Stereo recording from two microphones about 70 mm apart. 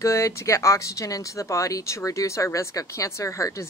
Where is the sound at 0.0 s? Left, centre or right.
Left.